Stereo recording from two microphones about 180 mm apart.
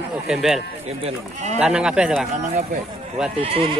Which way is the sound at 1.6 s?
5° right (ahead or behind).